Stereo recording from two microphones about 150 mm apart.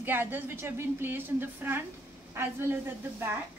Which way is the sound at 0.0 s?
15° right (ahead or behind).